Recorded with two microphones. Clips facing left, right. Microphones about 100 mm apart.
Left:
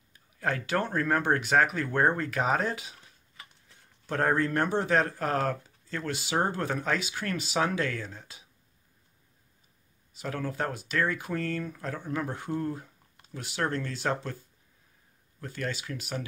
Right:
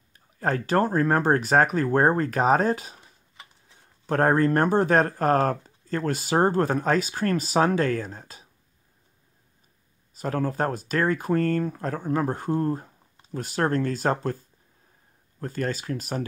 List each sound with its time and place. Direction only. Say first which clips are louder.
0.4 s speech: right 6 dB; 40° right (ahead or behind)
4.0 s speech: right 6 dB; 50° right (ahead or behind)
10.1 s speech: right 6 dB; 40° right (ahead or behind)
15.4 s speech: right 6 dB; 40° right (ahead or behind)